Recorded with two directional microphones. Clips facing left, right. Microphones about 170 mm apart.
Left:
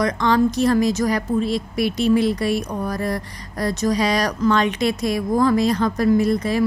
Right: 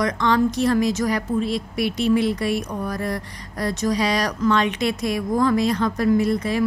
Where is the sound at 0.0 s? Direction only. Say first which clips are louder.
Left 2 dB; 35° left (ahead or behind).